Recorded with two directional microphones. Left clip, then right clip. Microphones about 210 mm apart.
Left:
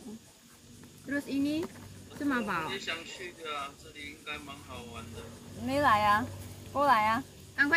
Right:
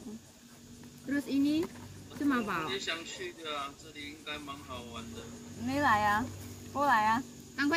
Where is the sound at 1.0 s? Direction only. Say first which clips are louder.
Right 1 dB; centre (ahead or behind).